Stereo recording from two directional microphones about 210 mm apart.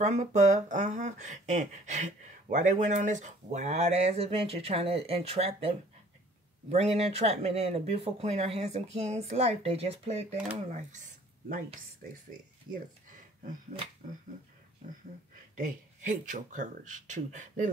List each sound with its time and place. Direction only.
0.0 s speech: 35° right (ahead or behind)
13.1 s a sound: 40° right (ahead or behind)
15.5 s speech: 40° right (ahead or behind)